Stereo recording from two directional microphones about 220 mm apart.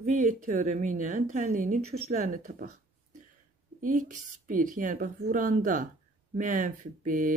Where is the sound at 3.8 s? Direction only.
35° right (ahead or behind).